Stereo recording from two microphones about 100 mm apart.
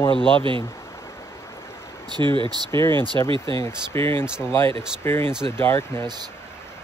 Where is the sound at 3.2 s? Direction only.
60° right (ahead or behind).